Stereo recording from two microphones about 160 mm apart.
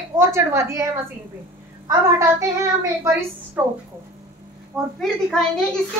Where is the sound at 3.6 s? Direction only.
10° right (ahead or behind).